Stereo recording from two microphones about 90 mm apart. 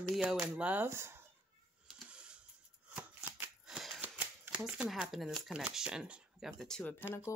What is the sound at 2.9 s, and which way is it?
Shuffling cards, 15° right (ahead or behind).